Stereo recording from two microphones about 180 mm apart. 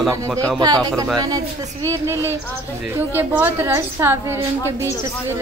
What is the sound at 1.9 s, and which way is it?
A woman's voice, 15° right (ahead or behind).